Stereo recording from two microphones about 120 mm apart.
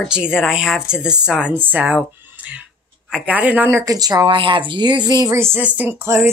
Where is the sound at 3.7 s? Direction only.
25° right (ahead or behind).